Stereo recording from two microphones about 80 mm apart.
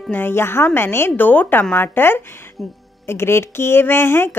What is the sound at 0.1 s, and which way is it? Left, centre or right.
Speech, left.